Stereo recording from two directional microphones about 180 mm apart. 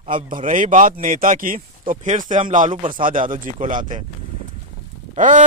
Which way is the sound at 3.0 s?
50° right (ahead or behind).